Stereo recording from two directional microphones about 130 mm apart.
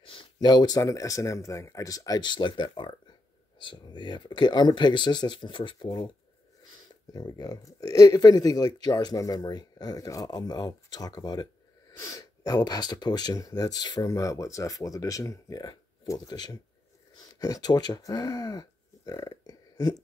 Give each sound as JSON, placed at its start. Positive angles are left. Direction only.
{"t": 0.0, "sound": "speech", "side_deg": 40}
{"t": 7.2, "sound": "speech", "side_deg": 30}